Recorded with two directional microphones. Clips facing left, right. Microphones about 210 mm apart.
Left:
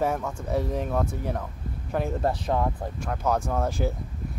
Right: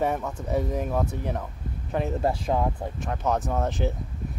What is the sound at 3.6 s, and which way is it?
Speech, 20° right (ahead or behind).